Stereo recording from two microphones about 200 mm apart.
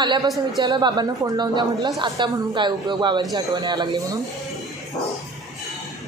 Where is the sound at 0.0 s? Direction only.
20° right (ahead or behind).